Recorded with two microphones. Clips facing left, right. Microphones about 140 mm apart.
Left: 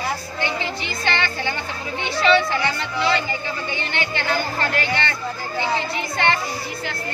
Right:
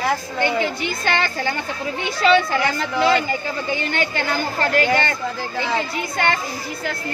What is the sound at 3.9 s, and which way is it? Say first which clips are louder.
Speech: left 2 dB; 45° right (ahead or behind).